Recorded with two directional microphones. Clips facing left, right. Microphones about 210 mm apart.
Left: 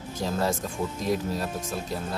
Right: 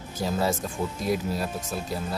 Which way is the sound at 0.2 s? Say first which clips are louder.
Right 1 dB; 5° right (ahead or behind).